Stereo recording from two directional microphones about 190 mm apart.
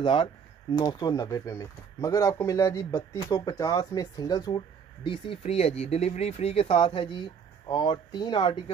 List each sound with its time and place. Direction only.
0.0 s speech: 25° left (ahead or behind)